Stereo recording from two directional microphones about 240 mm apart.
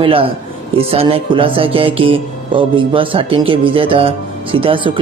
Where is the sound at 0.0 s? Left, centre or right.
Right.